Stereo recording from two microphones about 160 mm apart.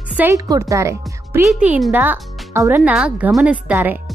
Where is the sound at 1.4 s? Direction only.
5° right (ahead or behind).